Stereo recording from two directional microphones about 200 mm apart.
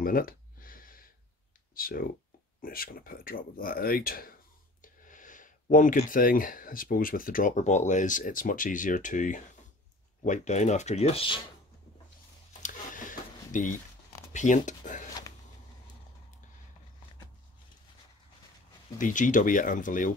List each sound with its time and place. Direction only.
0.0 s a sound: 45° left (ahead or behind)
1.8 s speech: 45° left (ahead or behind); by 11.4 s 25° left (ahead or behind)
13.5 s speech: 40° left (ahead or behind)
18.9 s speech: 40° left (ahead or behind)